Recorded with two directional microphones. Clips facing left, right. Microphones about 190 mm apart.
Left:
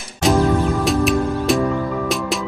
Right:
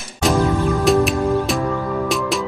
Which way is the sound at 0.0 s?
Centre (ahead or behind).